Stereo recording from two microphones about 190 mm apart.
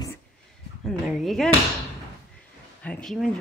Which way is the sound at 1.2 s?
Centre (ahead or behind).